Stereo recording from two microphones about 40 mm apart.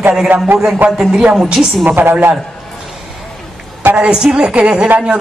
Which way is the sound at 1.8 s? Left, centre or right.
Right.